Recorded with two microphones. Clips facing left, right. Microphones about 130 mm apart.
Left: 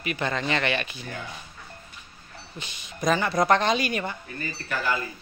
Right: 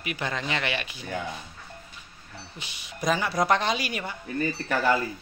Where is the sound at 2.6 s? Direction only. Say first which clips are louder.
Left 2 dB; 10° right (ahead or behind).